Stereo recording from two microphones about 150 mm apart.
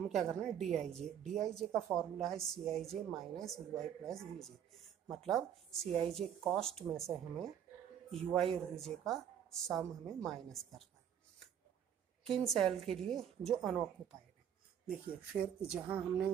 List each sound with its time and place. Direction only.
0.1 s a woman's voice: centre (ahead or behind)
5.9 s speech: 45° right (ahead or behind)
6.1 s a woman's voice: centre (ahead or behind)
12.3 s a woman's voice: centre (ahead or behind)
14.9 s a woman's voice: 10° right (ahead or behind)